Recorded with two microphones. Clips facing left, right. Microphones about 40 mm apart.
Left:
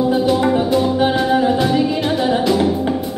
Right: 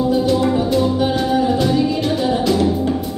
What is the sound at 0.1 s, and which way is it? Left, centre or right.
Music, centre.